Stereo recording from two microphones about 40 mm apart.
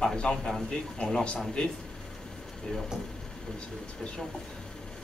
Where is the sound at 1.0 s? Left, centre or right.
Left.